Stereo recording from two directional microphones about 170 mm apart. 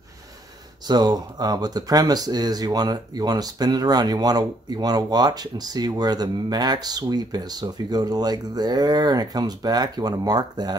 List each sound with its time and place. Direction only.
0.8 s speech: 25° right (ahead or behind)